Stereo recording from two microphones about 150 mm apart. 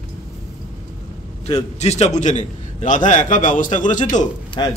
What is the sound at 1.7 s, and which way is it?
A man's voice, 45° left (ahead or behind).